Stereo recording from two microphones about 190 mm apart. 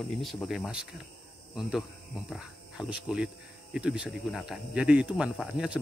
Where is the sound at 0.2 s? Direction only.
Centre (ahead or behind).